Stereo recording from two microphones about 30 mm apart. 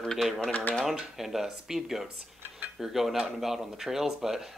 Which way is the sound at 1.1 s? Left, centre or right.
Centre.